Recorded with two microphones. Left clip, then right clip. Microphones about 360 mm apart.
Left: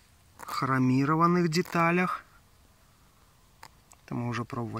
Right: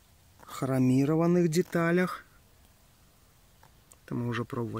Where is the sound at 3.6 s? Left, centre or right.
Left.